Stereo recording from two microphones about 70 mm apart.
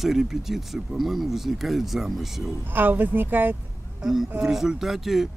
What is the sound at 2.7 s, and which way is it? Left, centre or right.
Speech, right.